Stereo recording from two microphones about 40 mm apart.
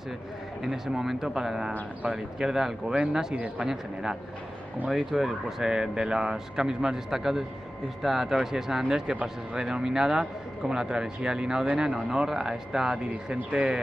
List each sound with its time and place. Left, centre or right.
0.7 s speech: centre
2.9 s speech: right
3.6 s speech: centre
5.7 s speech: centre